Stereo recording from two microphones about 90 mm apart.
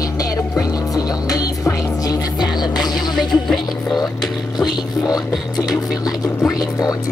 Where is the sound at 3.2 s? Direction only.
Centre (ahead or behind).